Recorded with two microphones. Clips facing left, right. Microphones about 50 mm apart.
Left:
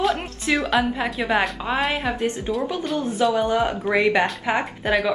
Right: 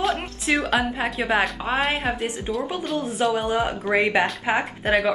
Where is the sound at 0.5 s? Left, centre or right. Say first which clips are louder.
Even; right.